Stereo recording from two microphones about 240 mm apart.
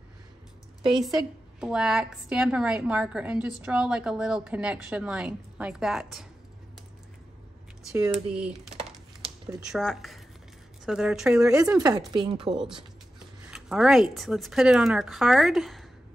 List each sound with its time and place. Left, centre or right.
0.9 s a woman's voice: centre
7.9 s speech: centre
8.3 s a woman's voice: centre
8.7 s a sound: right
9.7 s a woman's voice: centre
12.1 s a woman's voice: right
12.4 s a woman's voice: centre